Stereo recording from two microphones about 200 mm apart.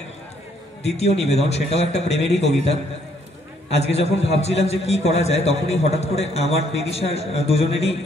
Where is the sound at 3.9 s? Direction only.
30° left (ahead or behind).